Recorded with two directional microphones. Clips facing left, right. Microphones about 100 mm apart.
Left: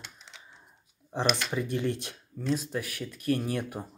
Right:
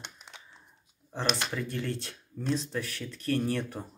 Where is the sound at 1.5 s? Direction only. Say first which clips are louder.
Left 4 dB; 15° left (ahead or behind).